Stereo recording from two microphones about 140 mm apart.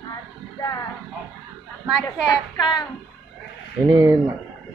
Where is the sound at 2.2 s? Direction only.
30° left (ahead or behind).